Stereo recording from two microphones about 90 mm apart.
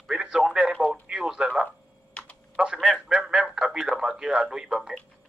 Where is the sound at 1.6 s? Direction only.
15° left (ahead or behind).